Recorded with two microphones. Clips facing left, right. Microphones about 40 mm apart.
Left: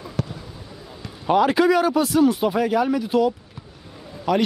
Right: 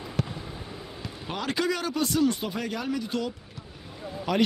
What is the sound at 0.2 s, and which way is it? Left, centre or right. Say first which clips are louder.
Basketball bounce: left 3 dB; centre.